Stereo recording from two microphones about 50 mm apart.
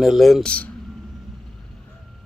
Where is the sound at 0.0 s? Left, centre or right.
Centre.